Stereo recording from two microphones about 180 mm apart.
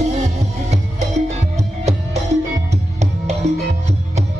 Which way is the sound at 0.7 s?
40° right (ahead or behind).